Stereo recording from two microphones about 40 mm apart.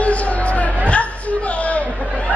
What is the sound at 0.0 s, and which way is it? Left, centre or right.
Music, left.